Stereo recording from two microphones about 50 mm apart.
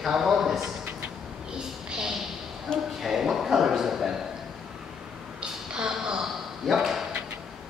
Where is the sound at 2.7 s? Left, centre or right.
Centre.